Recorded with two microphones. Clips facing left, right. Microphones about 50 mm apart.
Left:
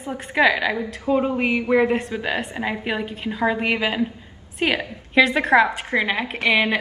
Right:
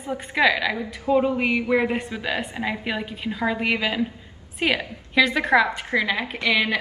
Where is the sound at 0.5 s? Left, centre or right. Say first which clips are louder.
Left 2 dB; centre.